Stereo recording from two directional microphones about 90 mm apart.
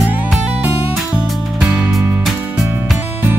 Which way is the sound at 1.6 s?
5° right (ahead or behind).